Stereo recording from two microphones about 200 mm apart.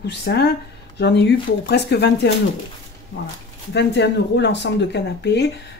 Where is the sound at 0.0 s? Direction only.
55° left (ahead or behind).